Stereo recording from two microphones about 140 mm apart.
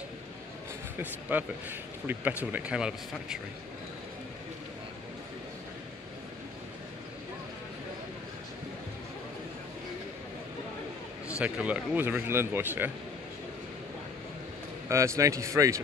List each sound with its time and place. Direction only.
0.9 s speech: 15° right (ahead or behind)
11.2 s speech: 10° right (ahead or behind)
14.9 s speech: 20° right (ahead or behind)